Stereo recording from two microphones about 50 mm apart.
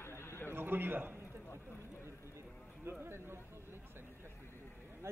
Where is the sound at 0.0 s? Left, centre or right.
Left.